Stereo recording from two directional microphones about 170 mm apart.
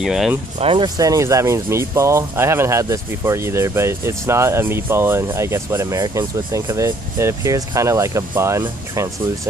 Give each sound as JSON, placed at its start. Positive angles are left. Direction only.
{"t": 0.0, "sound": "speech", "side_deg": 0}
{"t": 0.6, "sound": "speech", "side_deg": -30}